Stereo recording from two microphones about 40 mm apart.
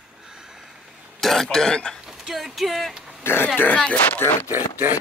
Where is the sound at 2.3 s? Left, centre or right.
Centre.